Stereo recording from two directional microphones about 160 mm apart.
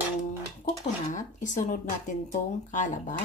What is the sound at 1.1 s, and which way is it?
Speech, 50° left (ahead or behind).